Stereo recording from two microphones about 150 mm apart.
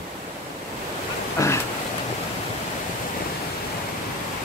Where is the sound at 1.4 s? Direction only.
20° left (ahead or behind).